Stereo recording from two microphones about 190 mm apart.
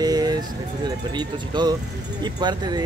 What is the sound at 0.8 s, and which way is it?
Speech, 20° right (ahead or behind).